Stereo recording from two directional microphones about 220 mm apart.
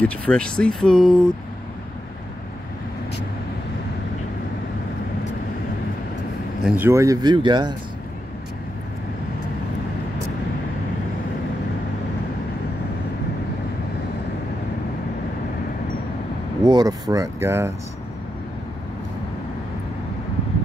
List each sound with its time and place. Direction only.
0.0 s speech: 5° left (ahead or behind)
6.6 s speech: 5° right (ahead or behind)
16.6 s speech: 20° right (ahead or behind)